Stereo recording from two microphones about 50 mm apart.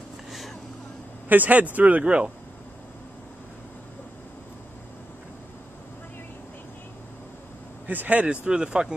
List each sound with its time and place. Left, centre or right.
0.3 s vehicle: centre
1.3 s speech: right
7.8 s speech: right
8.5 s speech: centre